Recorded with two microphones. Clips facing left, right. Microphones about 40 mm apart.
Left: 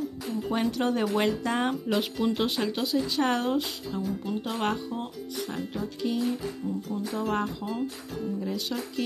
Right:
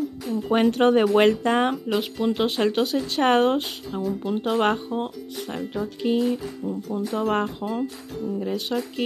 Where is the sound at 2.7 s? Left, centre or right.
Right.